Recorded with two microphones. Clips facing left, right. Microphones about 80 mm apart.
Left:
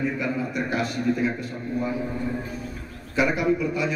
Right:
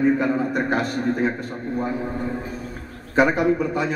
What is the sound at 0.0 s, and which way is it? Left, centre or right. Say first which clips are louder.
A man's voice: right 7 dB; right.